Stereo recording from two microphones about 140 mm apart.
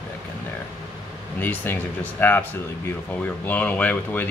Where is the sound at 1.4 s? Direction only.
15° left (ahead or behind).